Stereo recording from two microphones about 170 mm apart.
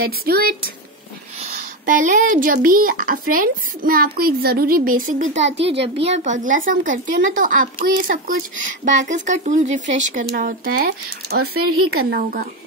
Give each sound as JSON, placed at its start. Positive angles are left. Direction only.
{"t": 0.0, "sound": "speech", "side_deg": -65}
{"t": 1.4, "sound": "speech", "side_deg": -50}
{"t": 5.7, "sound": "a woman's voice", "side_deg": -35}
{"t": 10.3, "sound": "speech", "side_deg": -65}